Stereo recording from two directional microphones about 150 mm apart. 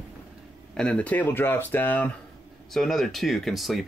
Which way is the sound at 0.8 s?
10° left (ahead or behind).